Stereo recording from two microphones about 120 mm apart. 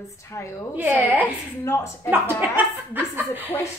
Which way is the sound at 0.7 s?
15° right (ahead or behind).